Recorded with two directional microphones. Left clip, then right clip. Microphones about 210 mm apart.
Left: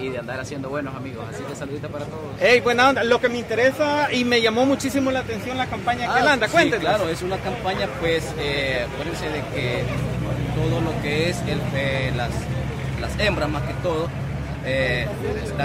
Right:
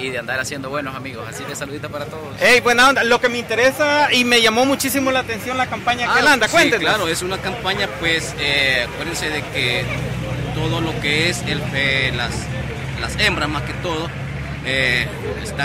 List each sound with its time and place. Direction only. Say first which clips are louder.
0.0 s a man's voice: right 6 dB; 5° left (ahead or behind)
2.4 s speech: right 4 dB; 15° right (ahead or behind)
6.2 s speech: right 4 dB; 20° right (ahead or behind)
6.8 s a man's voice: right 3 dB; 5° left (ahead or behind)
11.1 s a man's voice: right 7 dB; centre (ahead or behind)